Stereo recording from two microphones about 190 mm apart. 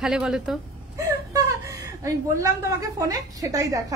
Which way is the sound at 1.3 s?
15° right (ahead or behind).